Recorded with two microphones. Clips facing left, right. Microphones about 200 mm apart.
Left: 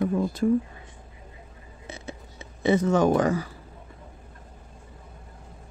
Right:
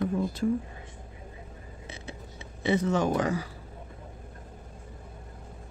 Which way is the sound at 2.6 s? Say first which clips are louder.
Left 5 dB; 45° left (ahead or behind).